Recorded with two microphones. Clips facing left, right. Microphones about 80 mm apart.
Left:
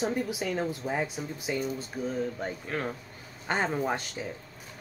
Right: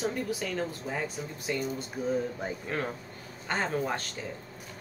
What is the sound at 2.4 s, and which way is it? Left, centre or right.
Speech, centre.